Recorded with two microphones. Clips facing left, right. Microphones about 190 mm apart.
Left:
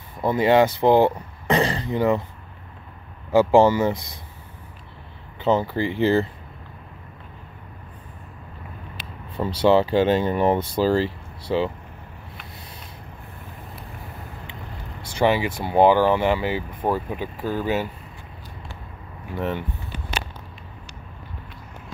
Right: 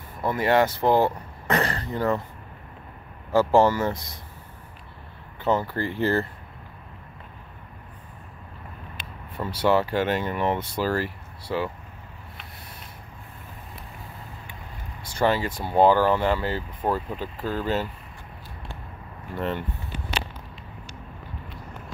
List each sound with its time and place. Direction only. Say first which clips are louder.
0.2 s speech: left 4 dB; 20° left (ahead or behind)
3.3 s speech: left 3 dB; 15° left (ahead or behind)
5.4 s speech: left 3 dB; 20° left (ahead or behind)
9.6 s speech: left 5 dB; 25° left (ahead or behind)
15.1 s speech: left 3 dB; 15° left (ahead or behind)
19.3 s speech: left 2 dB; 5° left (ahead or behind)